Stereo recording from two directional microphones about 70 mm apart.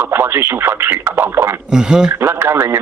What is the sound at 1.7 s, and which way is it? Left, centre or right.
Speech, centre.